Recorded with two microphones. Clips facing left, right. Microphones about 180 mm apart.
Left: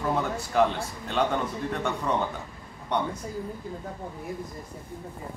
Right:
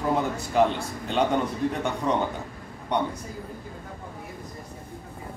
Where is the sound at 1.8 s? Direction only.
15° right (ahead or behind).